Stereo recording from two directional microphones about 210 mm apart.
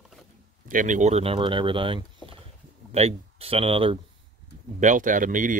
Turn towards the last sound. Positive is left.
turn(degrees=-40)  # may be behind; listen again after turning